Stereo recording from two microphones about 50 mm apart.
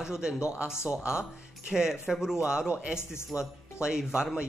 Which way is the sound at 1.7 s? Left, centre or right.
Centre.